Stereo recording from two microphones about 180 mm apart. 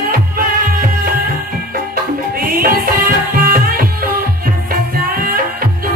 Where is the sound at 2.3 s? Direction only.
50° right (ahead or behind).